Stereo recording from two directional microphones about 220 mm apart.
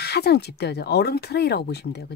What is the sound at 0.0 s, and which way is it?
Speech, 45° left (ahead or behind).